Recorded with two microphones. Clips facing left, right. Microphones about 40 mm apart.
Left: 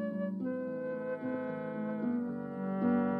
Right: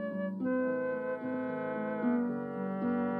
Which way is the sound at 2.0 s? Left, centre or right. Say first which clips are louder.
Right 5 dB; right.